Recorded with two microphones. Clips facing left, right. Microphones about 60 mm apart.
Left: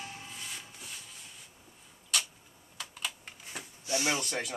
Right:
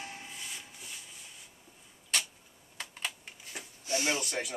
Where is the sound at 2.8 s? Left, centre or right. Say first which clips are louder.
Right 1 dB; right.